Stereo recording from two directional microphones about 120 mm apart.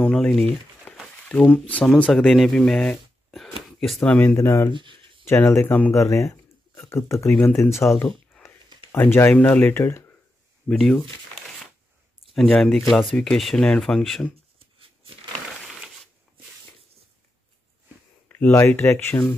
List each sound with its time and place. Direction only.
0.0 s speech: 5° left (ahead or behind); by 4.6 s 20° left (ahead or behind)
4.7 s a sound: 45° right (ahead or behind)
5.2 s speech: 20° left (ahead or behind)
5.9 s speech: 25° left (ahead or behind)
10.7 s speech: 5° left (ahead or behind)
12.4 s speech: 5° left (ahead or behind)
18.3 s speech: 15° left (ahead or behind)